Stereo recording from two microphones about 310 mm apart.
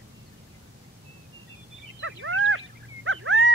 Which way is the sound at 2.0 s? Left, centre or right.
Right.